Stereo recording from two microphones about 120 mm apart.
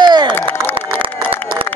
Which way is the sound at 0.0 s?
40° right (ahead or behind).